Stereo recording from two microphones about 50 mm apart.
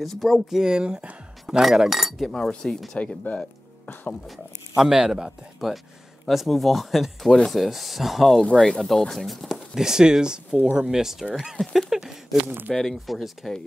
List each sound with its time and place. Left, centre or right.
0.0 s speech: centre
0.6 s speech: centre
2.3 s speech: centre
3.3 s speech: left
4.3 s speech: centre
4.9 s speech: centre
5.6 s speech: centre
9.8 s speech: centre
12.4 s speech: right
12.7 s speech: centre